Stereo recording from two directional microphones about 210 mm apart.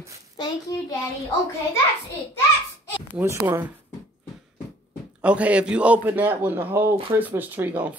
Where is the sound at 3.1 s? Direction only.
10° right (ahead or behind).